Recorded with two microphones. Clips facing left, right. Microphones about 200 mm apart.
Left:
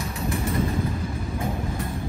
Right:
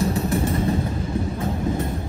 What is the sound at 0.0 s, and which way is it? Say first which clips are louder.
Vehicle: right 7 dB; 30° right (ahead or behind).